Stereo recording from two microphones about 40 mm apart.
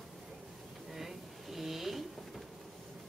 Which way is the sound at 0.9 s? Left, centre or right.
Centre.